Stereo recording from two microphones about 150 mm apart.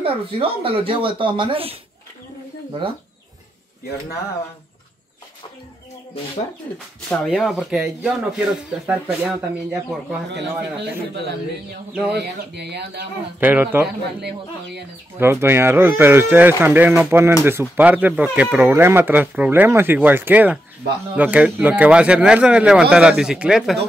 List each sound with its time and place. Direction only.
0.0 s speech: 40° right (ahead or behind)
7.1 s speech: centre (ahead or behind)
12.6 s speech: 90° right
13.4 s speech: 10° right (ahead or behind)
14.2 s speech: 90° right
15.1 s speech: 15° right (ahead or behind)